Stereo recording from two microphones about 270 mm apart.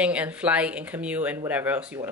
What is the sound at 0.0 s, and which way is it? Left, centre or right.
Speech, centre.